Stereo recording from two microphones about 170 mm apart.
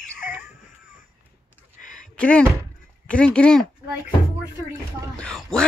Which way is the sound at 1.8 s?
50° left (ahead or behind).